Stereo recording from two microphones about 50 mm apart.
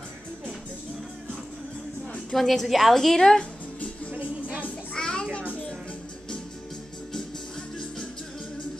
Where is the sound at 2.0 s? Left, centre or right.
Left.